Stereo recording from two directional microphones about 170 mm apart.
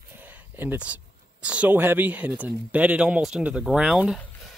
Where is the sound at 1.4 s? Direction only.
5° right (ahead or behind).